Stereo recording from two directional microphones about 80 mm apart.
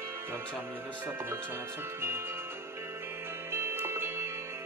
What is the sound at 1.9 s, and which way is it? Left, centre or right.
Music, right.